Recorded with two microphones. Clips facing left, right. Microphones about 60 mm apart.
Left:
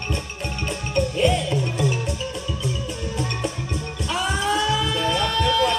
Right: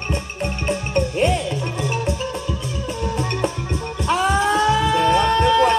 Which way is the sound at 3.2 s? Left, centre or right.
Right.